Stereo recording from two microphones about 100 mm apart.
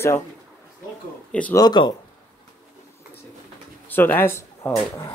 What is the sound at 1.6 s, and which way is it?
Speech, 45° left (ahead or behind).